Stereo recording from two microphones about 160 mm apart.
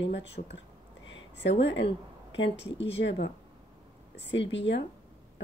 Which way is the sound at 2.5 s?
90° left.